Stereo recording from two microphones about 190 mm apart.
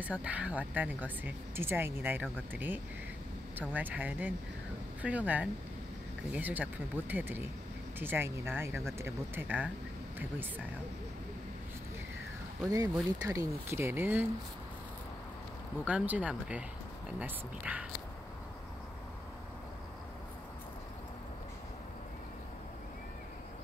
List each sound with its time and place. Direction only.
0.0 s speech: 5° right (ahead or behind)
12.6 s speech: 20° right (ahead or behind)
15.8 s speech: 10° right (ahead or behind)